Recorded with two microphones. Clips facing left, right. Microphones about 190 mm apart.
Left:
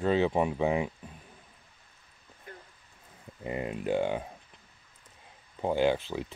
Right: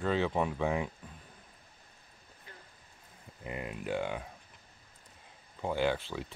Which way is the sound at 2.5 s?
50° left (ahead or behind).